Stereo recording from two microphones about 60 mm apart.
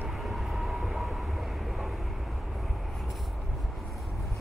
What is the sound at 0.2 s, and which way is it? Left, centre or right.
Train, centre.